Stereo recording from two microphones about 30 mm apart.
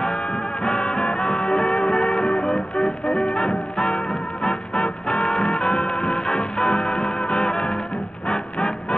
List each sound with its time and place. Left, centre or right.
0.7 s music: left